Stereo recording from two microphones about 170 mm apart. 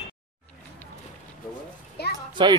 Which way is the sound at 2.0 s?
70° left (ahead or behind).